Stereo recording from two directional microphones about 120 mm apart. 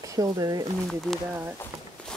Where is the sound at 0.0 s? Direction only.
30° right (ahead or behind).